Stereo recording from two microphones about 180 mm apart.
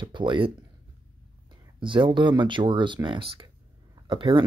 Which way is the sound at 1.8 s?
30° right (ahead or behind).